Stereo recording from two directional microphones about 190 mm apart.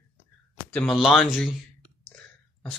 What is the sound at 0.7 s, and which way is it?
Speech, 5° left (ahead or behind).